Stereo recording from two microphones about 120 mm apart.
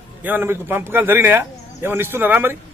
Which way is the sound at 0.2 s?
15° right (ahead or behind).